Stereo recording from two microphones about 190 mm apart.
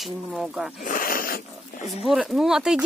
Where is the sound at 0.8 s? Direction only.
45° left (ahead or behind).